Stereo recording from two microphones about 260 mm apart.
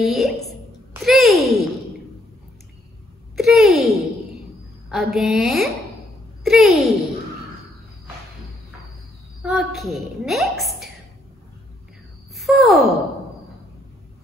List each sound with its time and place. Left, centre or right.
0.0 s a woman's voice: centre
3.3 s a sound: centre
4.9 s a woman's voice: centre
9.4 s a woman's voice: centre
12.4 s sigh: centre